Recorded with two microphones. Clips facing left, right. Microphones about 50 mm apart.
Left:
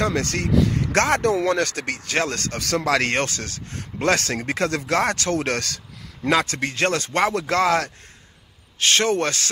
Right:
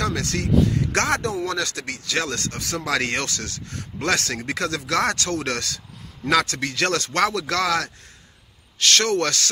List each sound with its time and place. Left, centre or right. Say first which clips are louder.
0.0 s speech: left 2 dB; left
2.6 s speech: left 4 dB; left
8.7 s speech: left 1 dB; left